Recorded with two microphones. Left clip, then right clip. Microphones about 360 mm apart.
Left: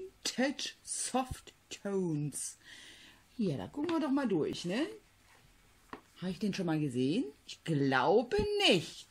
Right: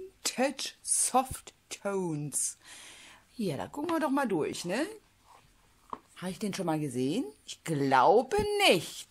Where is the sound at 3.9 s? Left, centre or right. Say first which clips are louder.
Right 4 dB; right.